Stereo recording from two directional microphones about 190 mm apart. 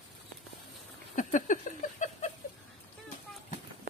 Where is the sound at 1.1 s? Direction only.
45° left (ahead or behind).